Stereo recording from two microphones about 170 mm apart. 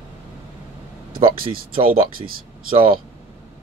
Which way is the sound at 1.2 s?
30° right (ahead or behind).